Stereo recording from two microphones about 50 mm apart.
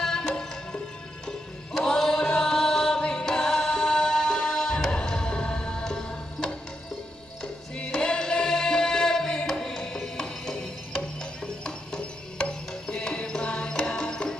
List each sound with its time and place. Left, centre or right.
0.0 s music: centre
1.7 s chant: centre
7.4 s music: centre